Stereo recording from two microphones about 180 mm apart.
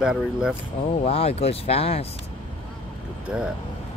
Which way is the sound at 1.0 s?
35° left (ahead or behind).